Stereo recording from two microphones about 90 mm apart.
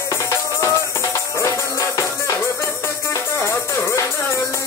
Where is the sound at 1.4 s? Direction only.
35° left (ahead or behind).